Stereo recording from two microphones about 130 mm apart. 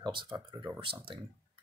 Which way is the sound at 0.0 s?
40° right (ahead or behind).